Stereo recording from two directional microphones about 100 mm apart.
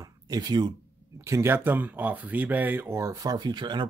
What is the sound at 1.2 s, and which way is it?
Speech, 25° right (ahead or behind).